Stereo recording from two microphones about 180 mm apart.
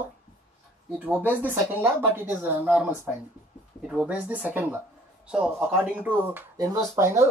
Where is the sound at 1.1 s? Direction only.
10° right (ahead or behind).